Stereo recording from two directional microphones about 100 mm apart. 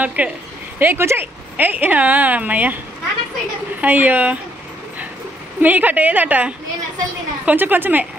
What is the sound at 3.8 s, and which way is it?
Speech, 20° right (ahead or behind).